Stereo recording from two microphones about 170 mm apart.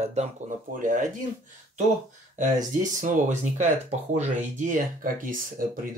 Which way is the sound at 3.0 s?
45° right (ahead or behind).